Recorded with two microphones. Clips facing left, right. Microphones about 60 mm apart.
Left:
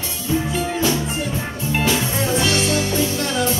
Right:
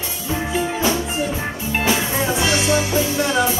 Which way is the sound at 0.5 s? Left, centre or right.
Centre.